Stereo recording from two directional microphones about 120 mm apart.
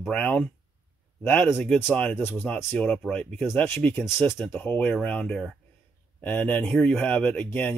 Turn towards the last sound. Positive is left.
turn(degrees=15)  # may be behind; listen again after turning